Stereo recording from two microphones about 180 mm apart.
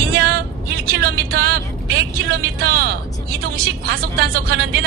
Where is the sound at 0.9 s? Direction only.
60° right (ahead or behind).